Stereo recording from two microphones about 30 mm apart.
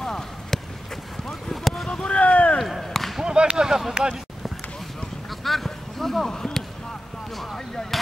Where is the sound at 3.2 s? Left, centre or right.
Right.